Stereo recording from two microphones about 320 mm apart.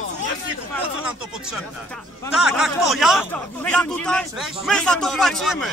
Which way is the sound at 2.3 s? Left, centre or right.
Centre.